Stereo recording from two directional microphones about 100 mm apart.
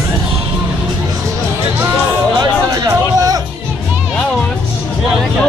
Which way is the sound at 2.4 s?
35° right (ahead or behind).